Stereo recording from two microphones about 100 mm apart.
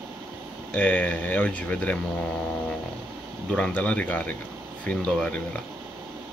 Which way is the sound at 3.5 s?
15° left (ahead or behind).